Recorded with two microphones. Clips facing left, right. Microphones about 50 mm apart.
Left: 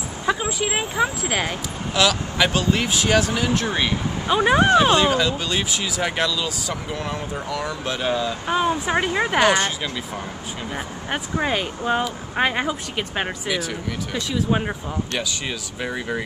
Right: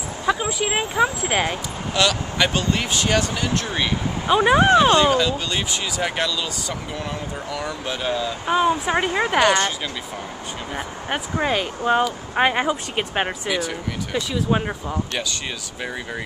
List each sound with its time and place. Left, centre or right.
0.3 s speech: centre
11.1 s speech: centre
12.9 s speech: centre
13.5 s speech: centre